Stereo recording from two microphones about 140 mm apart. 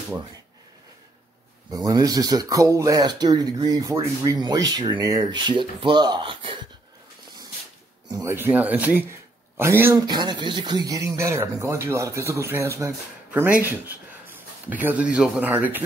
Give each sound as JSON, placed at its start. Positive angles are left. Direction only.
{"t": 1.7, "sound": "speech", "side_deg": -30}
{"t": 8.1, "sound": "speech", "side_deg": -25}
{"t": 8.4, "sound": "speech", "side_deg": -10}
{"t": 10.0, "sound": "speech", "side_deg": -30}